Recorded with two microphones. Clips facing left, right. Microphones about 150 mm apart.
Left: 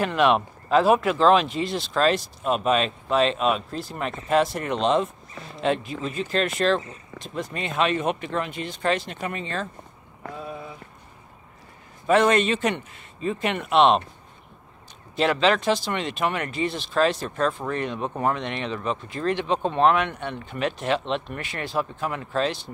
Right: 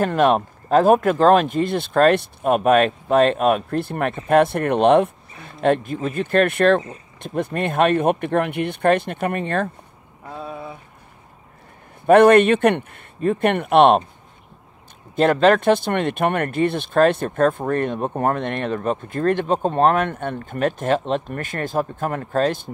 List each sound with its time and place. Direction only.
0.0 s speech: 45° right (ahead or behind)
12.1 s speech: 60° right (ahead or behind)
15.1 s speech: 50° right (ahead or behind)